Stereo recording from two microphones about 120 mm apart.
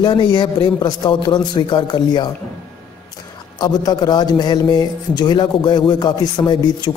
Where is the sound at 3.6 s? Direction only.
35° left (ahead or behind).